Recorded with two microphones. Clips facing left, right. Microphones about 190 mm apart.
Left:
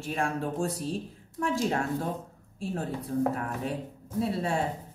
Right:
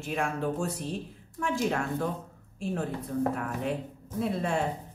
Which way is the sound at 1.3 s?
35° left (ahead or behind).